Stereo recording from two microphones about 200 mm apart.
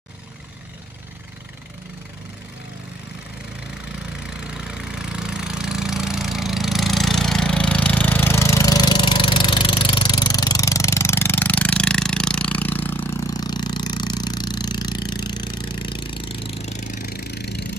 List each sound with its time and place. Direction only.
4.6 s engine: 5° right (ahead or behind); by 17.7 s 55° left (ahead or behind)